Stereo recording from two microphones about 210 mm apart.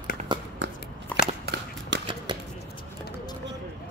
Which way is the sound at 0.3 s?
20° right (ahead or behind).